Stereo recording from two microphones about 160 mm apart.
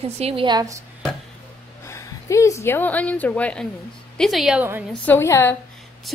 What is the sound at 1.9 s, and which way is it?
A woman's voice, 20° left (ahead or behind).